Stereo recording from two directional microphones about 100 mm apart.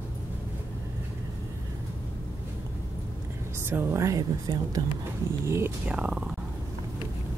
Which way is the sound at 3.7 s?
20° right (ahead or behind).